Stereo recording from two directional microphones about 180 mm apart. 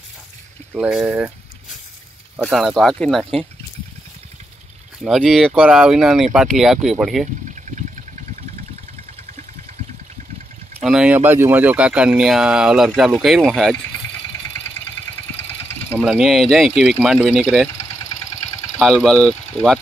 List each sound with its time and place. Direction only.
0.7 s speech: 5° right (ahead or behind)
5.0 s speech: centre (ahead or behind)
10.8 s speech: 5° right (ahead or behind)
14.0 s vehicle: 15° left (ahead or behind)
15.0 s engine: 10° left (ahead or behind)
16.0 s speech: 5° right (ahead or behind)
17.7 s engine: 20° left (ahead or behind)
18.8 s speech: centre (ahead or behind)